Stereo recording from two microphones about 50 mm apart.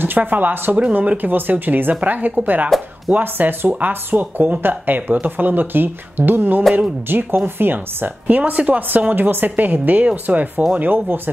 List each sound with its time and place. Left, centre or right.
0.0 s speech: right